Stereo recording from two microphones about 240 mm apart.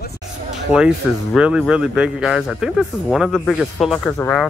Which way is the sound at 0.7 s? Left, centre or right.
Centre.